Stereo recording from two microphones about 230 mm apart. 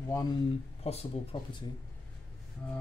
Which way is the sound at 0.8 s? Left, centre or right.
Left.